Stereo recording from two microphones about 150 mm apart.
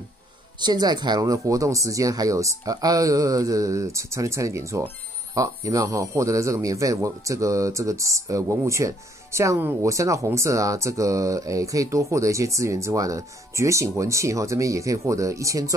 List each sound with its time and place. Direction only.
0.6 s speech: 30° right (ahead or behind)